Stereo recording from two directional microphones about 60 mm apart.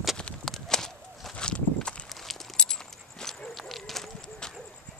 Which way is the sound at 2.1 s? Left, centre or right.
Centre.